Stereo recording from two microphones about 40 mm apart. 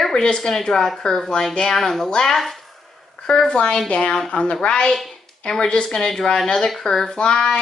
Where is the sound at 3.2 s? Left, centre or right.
Centre.